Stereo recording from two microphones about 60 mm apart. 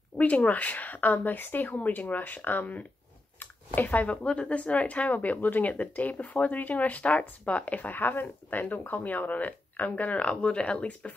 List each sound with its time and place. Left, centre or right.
0.2 s speech: left